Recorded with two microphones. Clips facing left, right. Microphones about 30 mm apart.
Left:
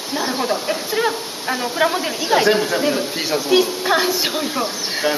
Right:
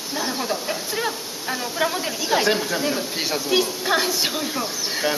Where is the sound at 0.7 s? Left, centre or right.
Centre.